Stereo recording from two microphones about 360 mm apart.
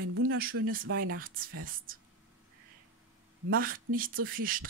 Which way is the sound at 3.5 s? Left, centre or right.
Right.